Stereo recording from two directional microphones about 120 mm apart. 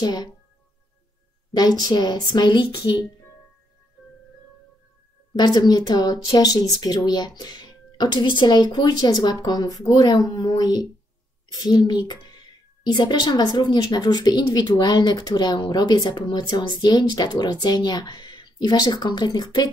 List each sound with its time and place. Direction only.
0.0 s speech: 35° left (ahead or behind)
1.5 s speech: 35° left (ahead or behind)
5.3 s speech: 35° left (ahead or behind)